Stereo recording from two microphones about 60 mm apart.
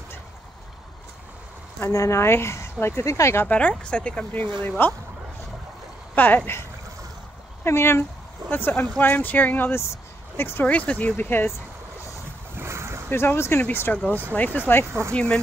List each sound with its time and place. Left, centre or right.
1.9 s speech: left
3.4 s speech: left
4.3 s speech: left
6.1 s speech: left
7.6 s speech: left
10.6 s speech: left
11.1 s speech: left
12.5 s boat: right
13.1 s speech: left
14.9 s speech: right
15.1 s speech: centre